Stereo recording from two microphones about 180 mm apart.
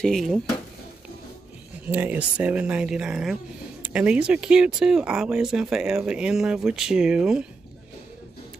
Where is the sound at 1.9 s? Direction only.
10° right (ahead or behind).